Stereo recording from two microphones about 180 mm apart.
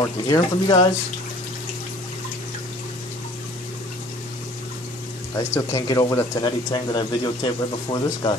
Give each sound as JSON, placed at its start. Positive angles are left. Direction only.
{"t": 0.0, "sound": "speech", "side_deg": 20}
{"t": 5.4, "sound": "speech", "side_deg": 15}